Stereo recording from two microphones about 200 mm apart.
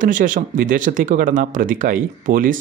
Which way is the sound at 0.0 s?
40° right (ahead or behind).